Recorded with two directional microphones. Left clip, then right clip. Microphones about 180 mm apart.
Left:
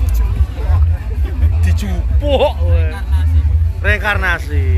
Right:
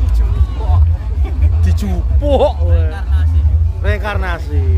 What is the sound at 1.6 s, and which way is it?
Speech, 30° right (ahead or behind).